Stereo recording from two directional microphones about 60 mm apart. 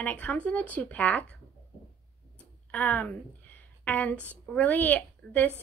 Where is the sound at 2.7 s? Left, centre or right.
Left.